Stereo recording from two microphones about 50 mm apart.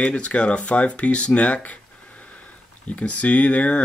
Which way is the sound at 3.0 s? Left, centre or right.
Left.